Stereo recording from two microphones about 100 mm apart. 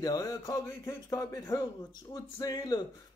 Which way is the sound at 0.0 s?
35° left (ahead or behind).